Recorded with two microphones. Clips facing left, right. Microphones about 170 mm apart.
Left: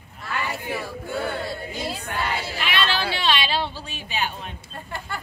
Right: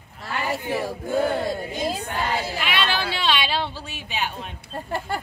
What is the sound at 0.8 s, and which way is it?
Speech, 45° right (ahead or behind).